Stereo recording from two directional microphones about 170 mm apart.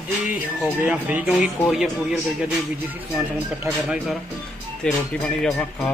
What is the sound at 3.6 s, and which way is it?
Speech, 5° right (ahead or behind).